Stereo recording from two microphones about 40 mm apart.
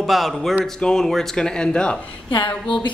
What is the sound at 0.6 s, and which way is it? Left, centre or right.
Speech, centre.